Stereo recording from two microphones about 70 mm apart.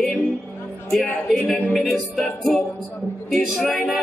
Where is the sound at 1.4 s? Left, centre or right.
Left.